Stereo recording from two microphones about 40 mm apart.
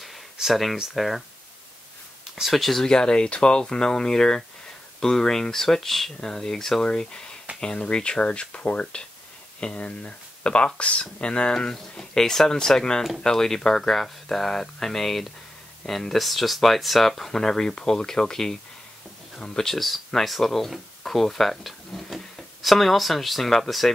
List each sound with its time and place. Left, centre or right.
0.9 s speech: centre
2.4 s speech: centre
2.8 s speech: centre
11.5 s speech: centre
19.7 s speech: centre